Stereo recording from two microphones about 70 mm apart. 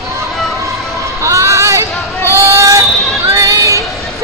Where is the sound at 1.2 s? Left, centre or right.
Right.